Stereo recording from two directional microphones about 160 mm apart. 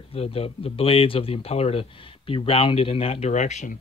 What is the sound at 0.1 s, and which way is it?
Speech, 40° left (ahead or behind).